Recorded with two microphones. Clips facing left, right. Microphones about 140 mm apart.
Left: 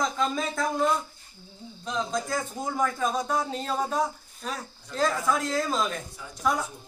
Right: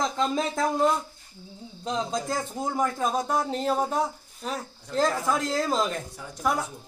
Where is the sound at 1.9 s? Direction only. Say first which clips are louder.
Right 1 dB; 35° right (ahead or behind).